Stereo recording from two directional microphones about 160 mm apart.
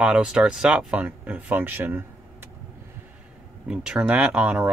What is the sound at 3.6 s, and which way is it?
Speech, 5° right (ahead or behind).